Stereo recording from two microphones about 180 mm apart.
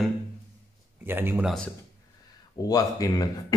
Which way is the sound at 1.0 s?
10° right (ahead or behind).